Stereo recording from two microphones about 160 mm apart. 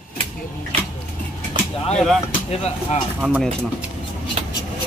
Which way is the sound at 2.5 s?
40° left (ahead or behind).